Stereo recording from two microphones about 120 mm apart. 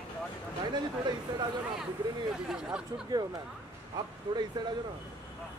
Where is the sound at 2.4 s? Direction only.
5° right (ahead or behind).